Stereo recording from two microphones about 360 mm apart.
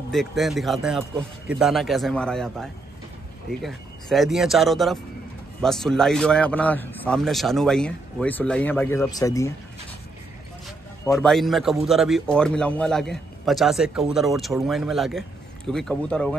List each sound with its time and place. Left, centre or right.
0.1 s a man's voice: centre
11.1 s a man's voice: centre